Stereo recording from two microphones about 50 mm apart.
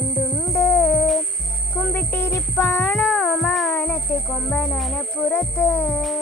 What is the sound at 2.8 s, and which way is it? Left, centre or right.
Music, left.